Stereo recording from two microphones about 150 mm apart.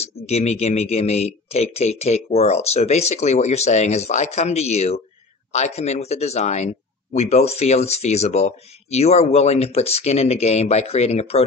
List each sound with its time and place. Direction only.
0.0 s speech: 45° left (ahead or behind)